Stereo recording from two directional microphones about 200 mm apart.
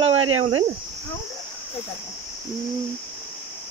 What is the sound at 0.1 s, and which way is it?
Speech, 90° right.